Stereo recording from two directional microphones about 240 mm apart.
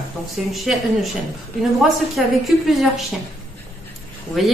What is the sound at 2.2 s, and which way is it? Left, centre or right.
Speech, centre.